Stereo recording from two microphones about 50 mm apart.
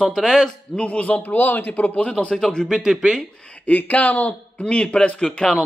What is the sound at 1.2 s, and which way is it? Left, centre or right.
Speech, left.